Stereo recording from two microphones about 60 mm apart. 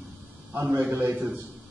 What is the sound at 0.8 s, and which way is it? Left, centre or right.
Speech, right.